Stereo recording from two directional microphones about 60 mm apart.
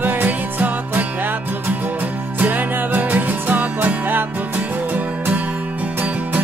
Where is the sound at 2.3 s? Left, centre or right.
Right.